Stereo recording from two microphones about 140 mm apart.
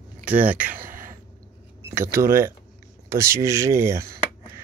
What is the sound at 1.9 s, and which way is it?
Speech, 20° right (ahead or behind).